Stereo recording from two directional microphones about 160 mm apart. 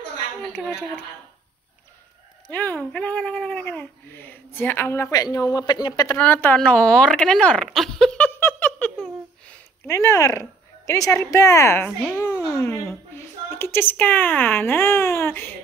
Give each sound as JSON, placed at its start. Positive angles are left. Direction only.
{"t": 2.4, "sound": "speech", "side_deg": 10}
{"t": 6.1, "sound": "a sound", "side_deg": 10}
{"t": 10.9, "sound": "a woman's voice", "side_deg": 20}